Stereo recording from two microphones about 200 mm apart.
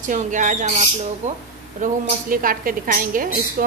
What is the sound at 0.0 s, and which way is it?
A woman's voice, 40° right (ahead or behind).